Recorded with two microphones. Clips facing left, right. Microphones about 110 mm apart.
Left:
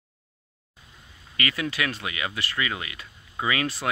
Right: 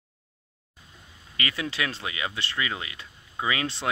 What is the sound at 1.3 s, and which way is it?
Speech, 25° right (ahead or behind).